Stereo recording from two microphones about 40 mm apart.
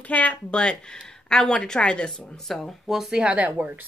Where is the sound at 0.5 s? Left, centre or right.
Left.